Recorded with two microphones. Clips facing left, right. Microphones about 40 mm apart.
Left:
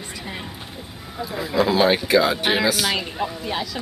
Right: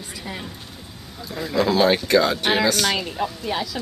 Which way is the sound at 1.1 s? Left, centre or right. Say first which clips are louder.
Left 1 dB; centre.